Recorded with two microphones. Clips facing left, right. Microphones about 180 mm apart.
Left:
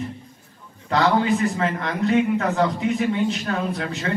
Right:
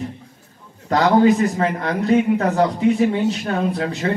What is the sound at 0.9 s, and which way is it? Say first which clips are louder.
Speech: right 5 dB; 40° right (ahead or behind).